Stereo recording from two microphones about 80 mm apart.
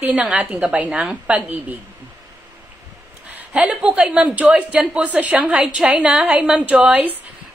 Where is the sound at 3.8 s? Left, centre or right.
Centre.